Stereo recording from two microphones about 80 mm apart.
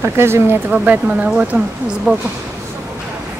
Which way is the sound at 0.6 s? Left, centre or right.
Centre.